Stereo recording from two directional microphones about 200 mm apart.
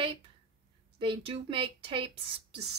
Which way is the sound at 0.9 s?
25° right (ahead or behind).